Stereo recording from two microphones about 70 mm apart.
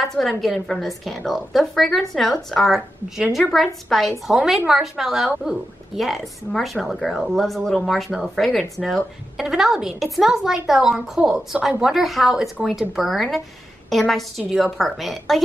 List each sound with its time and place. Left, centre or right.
0.1 s a woman's voice: centre